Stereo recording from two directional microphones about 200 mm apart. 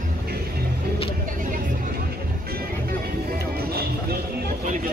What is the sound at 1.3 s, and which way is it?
Vehicle, 40° right (ahead or behind).